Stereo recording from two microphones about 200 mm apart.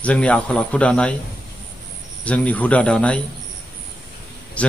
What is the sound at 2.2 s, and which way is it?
Speech, 5° left (ahead or behind).